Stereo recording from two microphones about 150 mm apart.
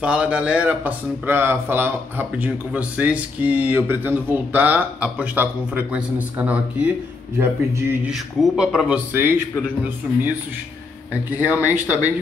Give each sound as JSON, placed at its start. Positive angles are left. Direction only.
{"t": 0.0, "sound": "speech", "side_deg": -10}
{"t": 8.1, "sound": "speech", "side_deg": -5}
{"t": 11.2, "sound": "speech", "side_deg": -10}